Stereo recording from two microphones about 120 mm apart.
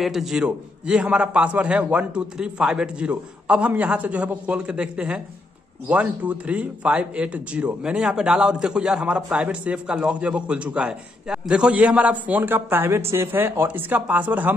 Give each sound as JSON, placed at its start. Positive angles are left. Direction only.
{"t": 0.0, "sound": "speech", "side_deg": -5}